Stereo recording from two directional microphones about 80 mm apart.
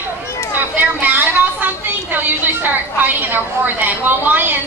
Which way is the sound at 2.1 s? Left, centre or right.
Right.